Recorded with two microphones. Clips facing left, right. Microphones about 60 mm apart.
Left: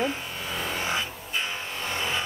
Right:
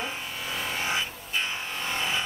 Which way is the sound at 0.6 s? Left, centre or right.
Centre.